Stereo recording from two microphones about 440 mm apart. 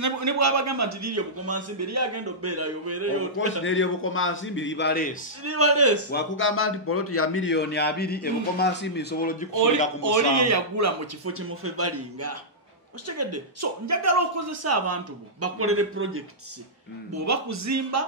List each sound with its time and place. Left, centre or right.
0.0 s a man's voice: right
3.6 s a man's voice: left
5.4 s a man's voice: right
6.1 s a man's voice: left
9.5 s a man's voice: right
17.3 s a man's voice: right